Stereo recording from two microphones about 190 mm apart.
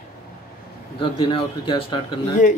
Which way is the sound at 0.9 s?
25° left (ahead or behind).